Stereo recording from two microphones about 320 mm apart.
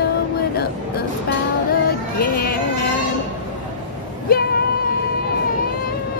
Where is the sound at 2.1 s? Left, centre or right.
Left.